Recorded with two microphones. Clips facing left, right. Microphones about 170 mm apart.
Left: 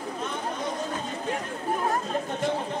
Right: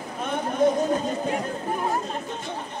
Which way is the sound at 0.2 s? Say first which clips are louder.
Right 11 dB; 55° right (ahead or behind).